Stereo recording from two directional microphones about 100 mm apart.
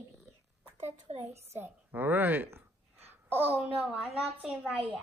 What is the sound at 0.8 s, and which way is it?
Speech, 90° right.